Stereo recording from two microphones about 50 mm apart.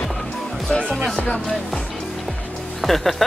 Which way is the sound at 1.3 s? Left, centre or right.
Centre.